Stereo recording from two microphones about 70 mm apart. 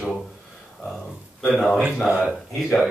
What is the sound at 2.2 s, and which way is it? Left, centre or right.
Speech, centre.